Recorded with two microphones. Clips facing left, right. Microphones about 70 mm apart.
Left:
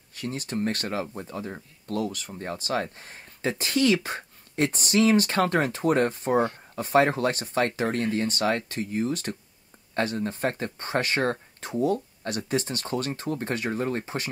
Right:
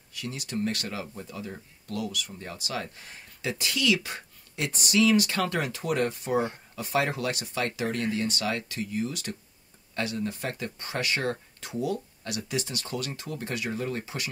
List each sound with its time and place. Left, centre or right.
0.1 s speech: left